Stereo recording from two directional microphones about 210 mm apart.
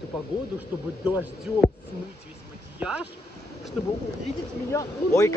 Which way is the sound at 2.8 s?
5° right (ahead or behind).